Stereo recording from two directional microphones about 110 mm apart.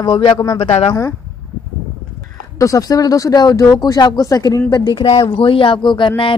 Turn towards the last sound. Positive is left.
turn(degrees=50)  # may be behind; listen again after turning